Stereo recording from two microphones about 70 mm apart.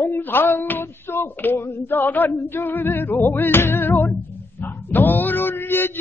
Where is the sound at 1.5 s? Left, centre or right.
Left.